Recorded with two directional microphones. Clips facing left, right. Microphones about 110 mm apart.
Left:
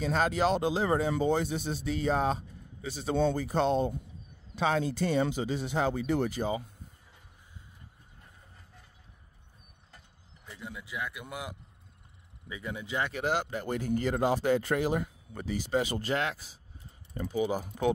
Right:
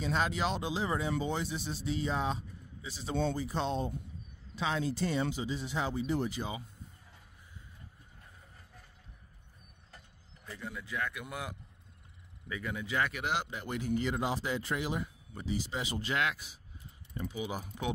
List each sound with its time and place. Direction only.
0.0 s speech: 50° left (ahead or behind)
10.4 s speech: 15° left (ahead or behind)
13.2 s speech: 45° left (ahead or behind)